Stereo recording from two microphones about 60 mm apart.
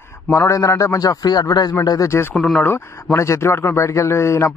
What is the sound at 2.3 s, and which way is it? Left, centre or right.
Speech, centre.